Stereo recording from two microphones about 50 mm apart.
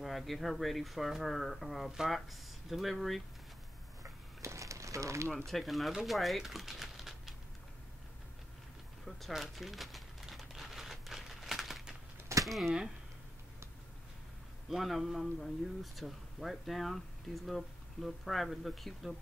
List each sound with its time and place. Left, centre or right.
0.0 s speech: centre
4.0 s a sound: right
5.5 s speech: centre
9.3 s crumpling: centre
12.4 s speech: centre
14.7 s speech: centre